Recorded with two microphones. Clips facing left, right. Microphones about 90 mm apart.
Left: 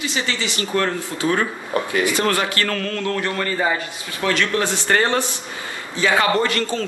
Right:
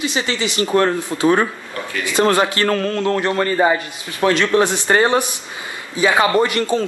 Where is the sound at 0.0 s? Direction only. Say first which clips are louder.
Right 3 dB; 20° right (ahead or behind).